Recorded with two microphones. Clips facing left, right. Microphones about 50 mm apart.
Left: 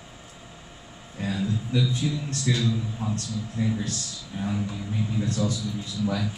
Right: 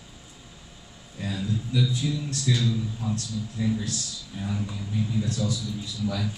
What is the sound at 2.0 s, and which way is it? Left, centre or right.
Speech, centre.